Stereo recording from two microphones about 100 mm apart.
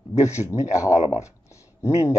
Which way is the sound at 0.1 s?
30° left (ahead or behind).